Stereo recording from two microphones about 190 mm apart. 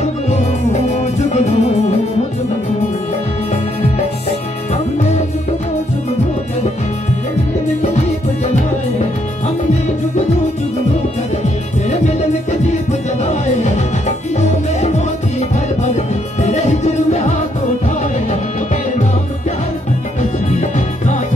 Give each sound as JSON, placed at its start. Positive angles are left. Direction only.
{"t": 0.0, "sound": "music", "side_deg": 35}
{"t": 13.2, "sound": "music", "side_deg": 35}
{"t": 16.3, "sound": "music", "side_deg": 35}
{"t": 20.2, "sound": "music", "side_deg": 40}